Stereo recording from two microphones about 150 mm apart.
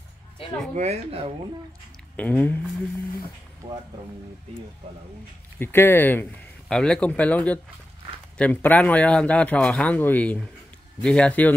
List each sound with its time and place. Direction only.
0.7 s speech: 45° right (ahead or behind)
2.1 s speech: 10° left (ahead or behind)
5.6 s speech: 15° left (ahead or behind)